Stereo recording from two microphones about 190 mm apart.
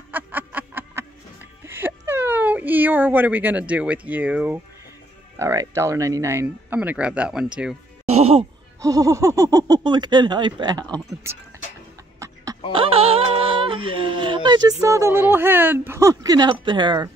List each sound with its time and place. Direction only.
0.1 s a sound: 10° right (ahead or behind)
5.4 s speech: 15° right (ahead or behind)
8.1 s speech: 35° right (ahead or behind)
8.8 s speech: 20° right (ahead or behind)
12.7 s speech: 30° right (ahead or behind)